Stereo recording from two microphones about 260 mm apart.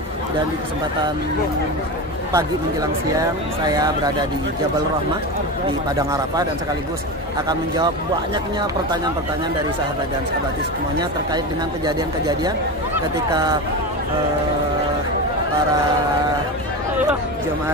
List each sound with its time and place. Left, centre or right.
2.3 s speech: centre
11.0 s speech: centre